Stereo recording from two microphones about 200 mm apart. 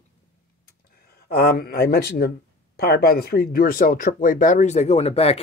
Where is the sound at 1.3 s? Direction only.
50° left (ahead or behind).